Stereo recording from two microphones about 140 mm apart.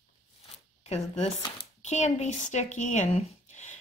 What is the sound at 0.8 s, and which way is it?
Speech, 50° left (ahead or behind).